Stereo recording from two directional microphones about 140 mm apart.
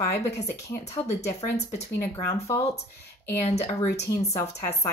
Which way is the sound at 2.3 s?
20° left (ahead or behind).